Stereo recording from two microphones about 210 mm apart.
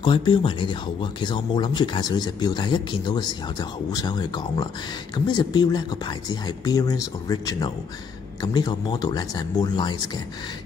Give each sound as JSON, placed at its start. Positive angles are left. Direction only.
{"t": 0.0, "sound": "speech", "side_deg": 25}